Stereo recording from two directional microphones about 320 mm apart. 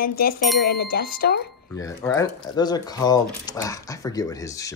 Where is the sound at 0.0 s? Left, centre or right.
Left.